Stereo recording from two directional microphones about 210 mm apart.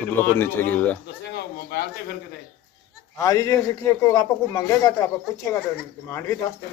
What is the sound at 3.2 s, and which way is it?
Speech, 15° left (ahead or behind).